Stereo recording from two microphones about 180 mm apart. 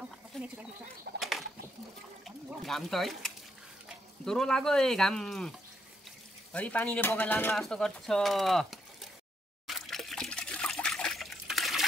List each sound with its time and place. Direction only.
0.3 s speech: 5° left (ahead or behind)
1.1 s bird: 75° right (ahead or behind)
2.2 s speech: centre (ahead or behind)
6.5 s speech: 10° left (ahead or behind)
9.7 s liquid: centre (ahead or behind)